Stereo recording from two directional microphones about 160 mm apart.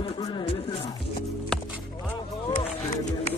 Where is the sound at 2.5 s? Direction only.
45° left (ahead or behind).